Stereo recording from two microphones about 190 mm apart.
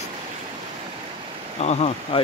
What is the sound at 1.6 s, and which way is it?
Speech, 35° left (ahead or behind).